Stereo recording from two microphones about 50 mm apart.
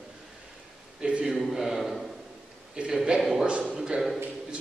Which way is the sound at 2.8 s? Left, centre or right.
Right.